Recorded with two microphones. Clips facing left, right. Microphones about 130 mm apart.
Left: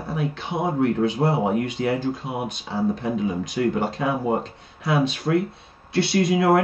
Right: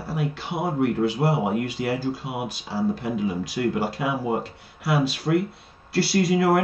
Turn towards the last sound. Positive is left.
turn(degrees=0)  # may be behind; listen again after turning